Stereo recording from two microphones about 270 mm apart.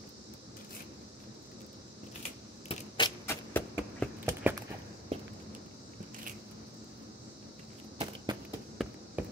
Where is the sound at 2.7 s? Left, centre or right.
Centre.